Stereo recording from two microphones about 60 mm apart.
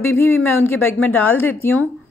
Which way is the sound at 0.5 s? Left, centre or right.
Left.